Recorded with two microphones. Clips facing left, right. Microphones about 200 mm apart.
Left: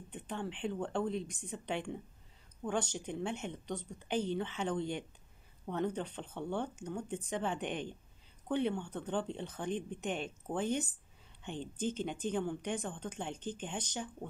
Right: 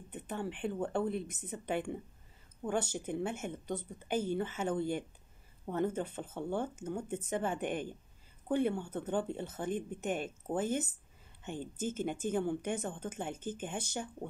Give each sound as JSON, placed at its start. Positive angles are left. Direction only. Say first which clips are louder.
{"t": 0.1, "sound": "speech", "louder": "right 2 dB", "side_deg": -5}